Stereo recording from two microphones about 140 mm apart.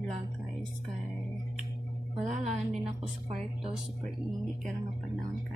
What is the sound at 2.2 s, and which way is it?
Speech, 55° right (ahead or behind).